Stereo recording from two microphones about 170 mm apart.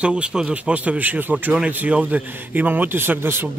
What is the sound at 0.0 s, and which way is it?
Speech, 5° right (ahead or behind).